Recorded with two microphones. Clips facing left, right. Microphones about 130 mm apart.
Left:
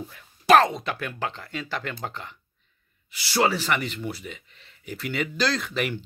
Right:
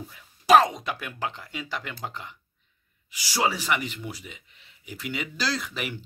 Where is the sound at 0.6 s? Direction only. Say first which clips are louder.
Left 1 dB; 10° right (ahead or behind).